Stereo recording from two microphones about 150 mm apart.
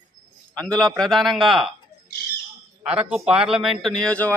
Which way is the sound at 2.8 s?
10° right (ahead or behind).